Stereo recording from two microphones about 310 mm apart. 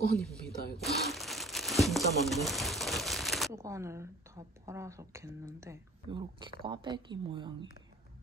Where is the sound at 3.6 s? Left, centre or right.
Centre.